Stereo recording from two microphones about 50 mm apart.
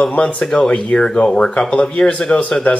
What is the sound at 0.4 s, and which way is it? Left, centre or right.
Speech, centre.